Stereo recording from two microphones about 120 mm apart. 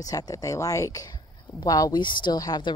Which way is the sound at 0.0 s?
30° left (ahead or behind).